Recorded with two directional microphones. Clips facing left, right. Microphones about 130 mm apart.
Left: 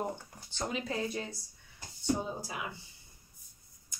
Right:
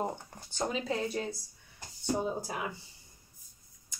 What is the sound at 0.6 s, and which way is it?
Speech, 30° right (ahead or behind).